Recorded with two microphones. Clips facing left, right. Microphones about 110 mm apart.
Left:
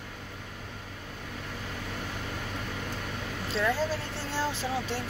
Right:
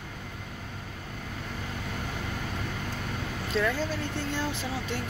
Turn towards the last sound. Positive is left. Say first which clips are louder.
# left 1 dB
turn(degrees=35)  # may be behind; listen again after turning